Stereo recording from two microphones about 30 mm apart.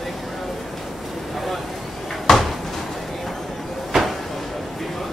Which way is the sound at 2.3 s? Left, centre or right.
Centre.